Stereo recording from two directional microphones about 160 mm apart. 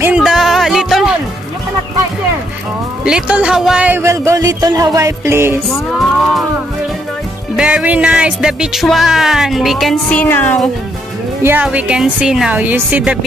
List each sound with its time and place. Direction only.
0.0 s music: 5° right (ahead or behind)
3.1 s speech: 5° right (ahead or behind)
7.5 s music: 5° right (ahead or behind)
10.2 s speech: 10° left (ahead or behind)
11.4 s speech: 10° right (ahead or behind)